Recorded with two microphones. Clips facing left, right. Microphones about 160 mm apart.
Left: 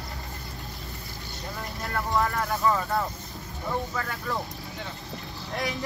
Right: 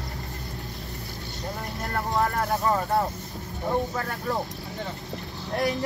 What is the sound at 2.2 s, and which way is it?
Vehicle, 40° right (ahead or behind).